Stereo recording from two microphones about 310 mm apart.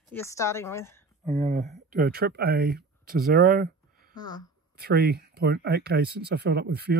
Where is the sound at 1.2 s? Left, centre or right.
Centre.